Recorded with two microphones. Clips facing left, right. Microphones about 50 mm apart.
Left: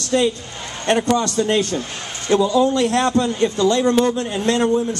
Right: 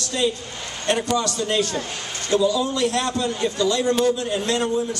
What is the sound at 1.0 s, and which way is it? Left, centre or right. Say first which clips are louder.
A man's voice: left 5 dB; left.